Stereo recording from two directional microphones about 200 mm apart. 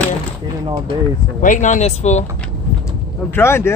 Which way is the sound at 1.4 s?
40° left (ahead or behind).